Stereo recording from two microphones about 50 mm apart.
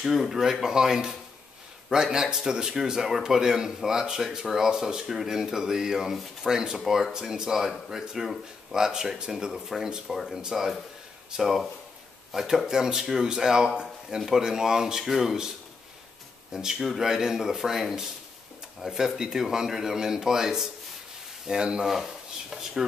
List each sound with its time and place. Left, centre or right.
0.0 s a man's voice: centre
16.5 s a man's voice: centre
21.8 s speech: centre